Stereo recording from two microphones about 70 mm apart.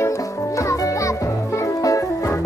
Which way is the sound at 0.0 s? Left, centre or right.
Left.